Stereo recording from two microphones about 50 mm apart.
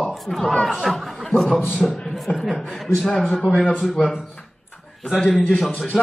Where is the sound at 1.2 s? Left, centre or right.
Centre.